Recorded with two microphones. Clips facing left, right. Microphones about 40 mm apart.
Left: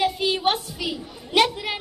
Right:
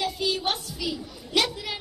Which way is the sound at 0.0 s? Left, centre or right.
Left.